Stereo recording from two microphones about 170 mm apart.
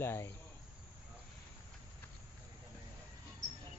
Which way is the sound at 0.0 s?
15° left (ahead or behind).